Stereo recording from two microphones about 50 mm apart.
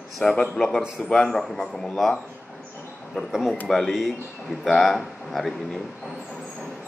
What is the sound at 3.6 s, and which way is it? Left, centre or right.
A man's voice, centre.